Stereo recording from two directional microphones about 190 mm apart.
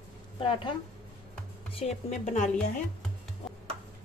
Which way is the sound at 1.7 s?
35° left (ahead or behind).